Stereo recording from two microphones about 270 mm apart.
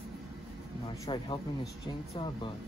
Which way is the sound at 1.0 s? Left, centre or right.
Centre.